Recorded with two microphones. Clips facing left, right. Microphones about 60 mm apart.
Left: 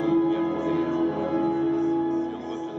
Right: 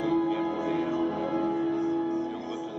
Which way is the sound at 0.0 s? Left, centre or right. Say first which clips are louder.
Left 4 dB; centre.